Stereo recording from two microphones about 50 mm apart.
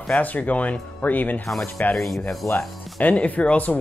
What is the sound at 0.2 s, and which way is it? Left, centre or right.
Speech, left.